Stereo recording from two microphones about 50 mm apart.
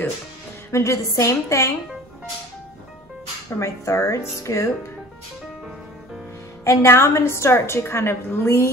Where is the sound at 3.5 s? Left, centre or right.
Left.